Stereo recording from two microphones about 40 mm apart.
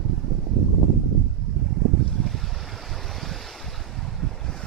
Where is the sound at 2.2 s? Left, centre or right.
Centre.